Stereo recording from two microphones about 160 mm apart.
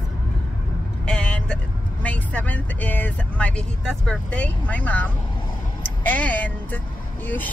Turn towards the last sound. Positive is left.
turn(degrees=10)  # may be behind; listen again after turning